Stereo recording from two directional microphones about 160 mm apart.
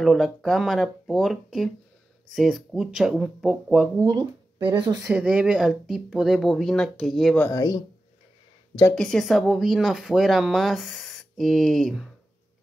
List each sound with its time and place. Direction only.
0.0 s speech: centre (ahead or behind)
4.0 s speech: 25° right (ahead or behind)
5.0 s speech: 10° right (ahead or behind)
7.4 s speech: 20° left (ahead or behind)
8.9 s speech: 5° left (ahead or behind)